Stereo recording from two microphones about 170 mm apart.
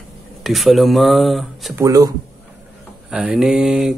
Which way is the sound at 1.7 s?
20° right (ahead or behind).